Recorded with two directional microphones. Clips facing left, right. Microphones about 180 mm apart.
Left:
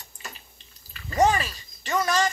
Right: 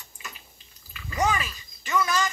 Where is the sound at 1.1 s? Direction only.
40° left (ahead or behind).